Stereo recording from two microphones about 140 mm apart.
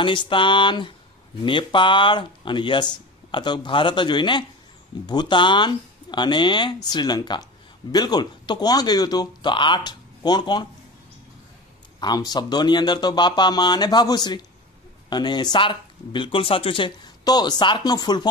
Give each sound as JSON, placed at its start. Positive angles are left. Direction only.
{"t": 0.0, "sound": "speech", "side_deg": 35}
{"t": 12.0, "sound": "speech", "side_deg": 30}